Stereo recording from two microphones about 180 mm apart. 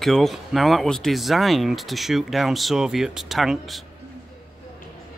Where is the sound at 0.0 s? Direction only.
Centre (ahead or behind).